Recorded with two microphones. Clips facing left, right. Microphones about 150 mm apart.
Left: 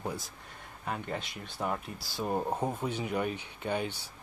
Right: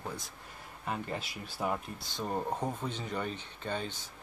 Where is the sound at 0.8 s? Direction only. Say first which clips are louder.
Left 1 dB; centre (ahead or behind).